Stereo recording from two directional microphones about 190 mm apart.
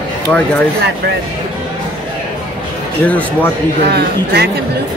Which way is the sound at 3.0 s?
10° left (ahead or behind).